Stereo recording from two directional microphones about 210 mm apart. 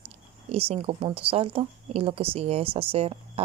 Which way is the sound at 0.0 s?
30° right (ahead or behind).